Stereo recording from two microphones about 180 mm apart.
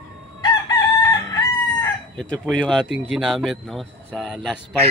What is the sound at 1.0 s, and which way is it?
Chicken, 20° left (ahead or behind).